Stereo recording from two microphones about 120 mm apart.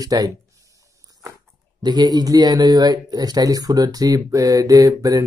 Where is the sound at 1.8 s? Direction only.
35° right (ahead or behind).